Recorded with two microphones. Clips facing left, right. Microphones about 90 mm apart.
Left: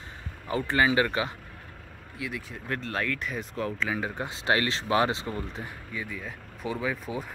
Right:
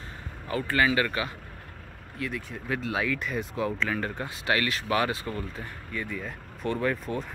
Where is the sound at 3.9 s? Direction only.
10° left (ahead or behind).